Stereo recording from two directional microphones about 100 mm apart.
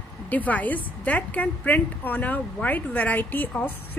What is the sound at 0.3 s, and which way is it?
A woman's voice, 15° left (ahead or behind).